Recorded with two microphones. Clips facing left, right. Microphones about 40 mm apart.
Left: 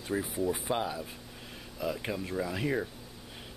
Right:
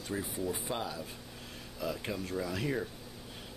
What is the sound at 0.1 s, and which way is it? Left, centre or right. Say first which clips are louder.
Speech: left 5 dB; centre.